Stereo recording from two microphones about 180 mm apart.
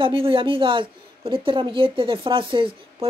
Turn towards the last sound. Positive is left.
turn(degrees=-30)  # may be behind; listen again after turning